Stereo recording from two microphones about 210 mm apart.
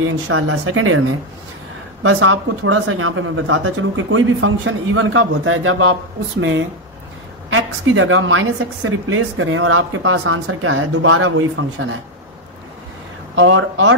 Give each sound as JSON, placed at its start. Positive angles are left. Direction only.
{"t": 0.0, "sound": "a woman's voice", "side_deg": -75}
{"t": 7.4, "sound": "a woman's voice", "side_deg": -70}
{"t": 13.4, "sound": "a woman's voice", "side_deg": -75}